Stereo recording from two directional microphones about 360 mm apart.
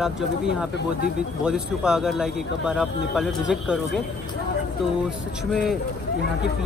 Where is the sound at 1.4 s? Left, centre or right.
Centre.